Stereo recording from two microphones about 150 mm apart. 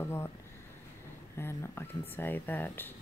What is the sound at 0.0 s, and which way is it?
Speech, 15° left (ahead or behind).